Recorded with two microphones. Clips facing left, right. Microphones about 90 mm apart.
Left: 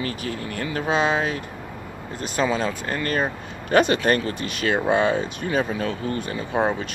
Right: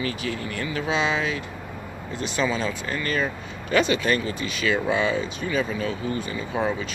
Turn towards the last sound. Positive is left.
turn(degrees=55)  # may be behind; listen again after turning